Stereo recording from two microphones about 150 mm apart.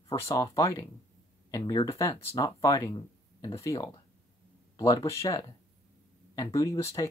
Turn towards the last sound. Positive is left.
turn(degrees=20)  # may be behind; listen again after turning